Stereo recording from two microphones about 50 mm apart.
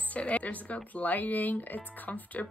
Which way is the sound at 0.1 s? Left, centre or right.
Left.